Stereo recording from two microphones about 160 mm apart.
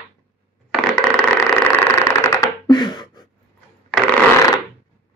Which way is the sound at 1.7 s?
15° left (ahead or behind).